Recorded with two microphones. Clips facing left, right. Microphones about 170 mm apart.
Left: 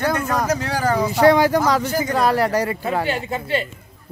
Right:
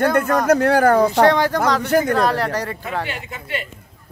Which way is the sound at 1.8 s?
60° right (ahead or behind).